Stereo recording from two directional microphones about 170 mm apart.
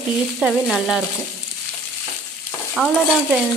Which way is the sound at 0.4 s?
Centre (ahead or behind).